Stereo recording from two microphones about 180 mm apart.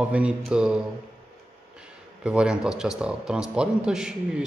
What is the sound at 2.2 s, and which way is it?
Speech, 5° right (ahead or behind).